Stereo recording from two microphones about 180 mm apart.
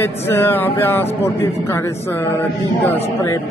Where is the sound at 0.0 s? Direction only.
10° left (ahead or behind).